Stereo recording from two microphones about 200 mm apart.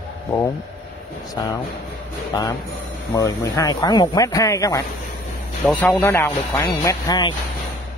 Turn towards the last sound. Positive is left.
turn(degrees=20)  # may be behind; listen again after turning